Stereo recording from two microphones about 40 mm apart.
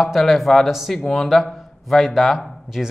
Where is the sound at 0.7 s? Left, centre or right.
Centre.